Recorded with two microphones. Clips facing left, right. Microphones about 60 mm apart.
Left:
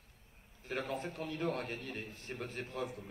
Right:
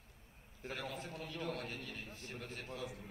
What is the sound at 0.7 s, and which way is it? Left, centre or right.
A man's voice, left.